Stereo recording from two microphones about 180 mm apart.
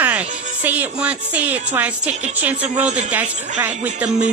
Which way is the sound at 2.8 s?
40° right (ahead or behind).